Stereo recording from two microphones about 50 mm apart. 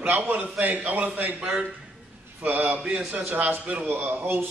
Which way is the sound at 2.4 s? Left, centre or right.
Right.